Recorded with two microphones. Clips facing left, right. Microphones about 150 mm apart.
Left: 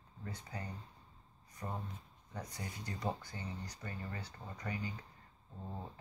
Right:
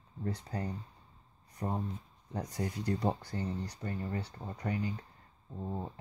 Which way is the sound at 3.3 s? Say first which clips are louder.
Right 9 dB; 50° right (ahead or behind).